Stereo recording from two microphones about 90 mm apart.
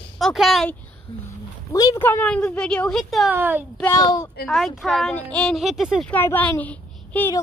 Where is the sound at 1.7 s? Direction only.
45° left (ahead or behind).